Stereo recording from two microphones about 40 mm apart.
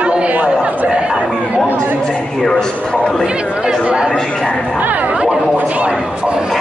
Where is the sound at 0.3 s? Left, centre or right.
Right.